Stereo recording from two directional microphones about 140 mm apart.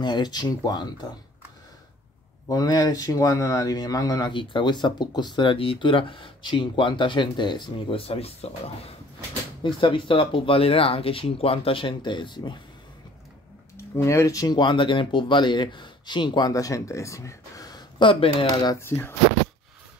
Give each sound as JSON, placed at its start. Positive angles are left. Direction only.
{"t": 0.0, "sound": "speech", "side_deg": 30}
{"t": 2.4, "sound": "speech", "side_deg": 30}
{"t": 4.3, "sound": "speech", "side_deg": 35}
{"t": 9.6, "sound": "speech", "side_deg": 35}
{"t": 13.9, "sound": "speech", "side_deg": 20}
{"t": 18.8, "sound": "speech", "side_deg": 15}